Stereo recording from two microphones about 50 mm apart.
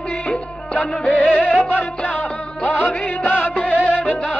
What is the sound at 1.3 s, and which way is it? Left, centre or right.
Music, centre.